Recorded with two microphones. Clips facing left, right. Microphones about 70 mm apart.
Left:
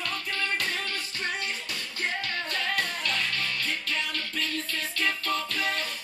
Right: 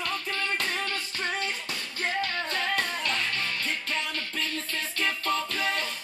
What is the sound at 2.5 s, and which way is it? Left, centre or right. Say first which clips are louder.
Music: right 1 dB; right.